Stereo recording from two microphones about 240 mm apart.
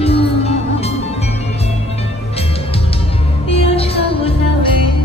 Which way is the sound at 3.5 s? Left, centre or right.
Left.